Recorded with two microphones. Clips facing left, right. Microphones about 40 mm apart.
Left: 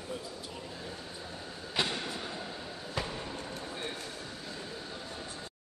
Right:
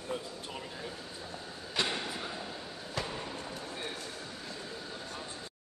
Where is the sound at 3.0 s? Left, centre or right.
Centre.